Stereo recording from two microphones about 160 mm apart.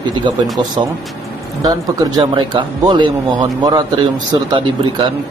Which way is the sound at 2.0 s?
25° right (ahead or behind).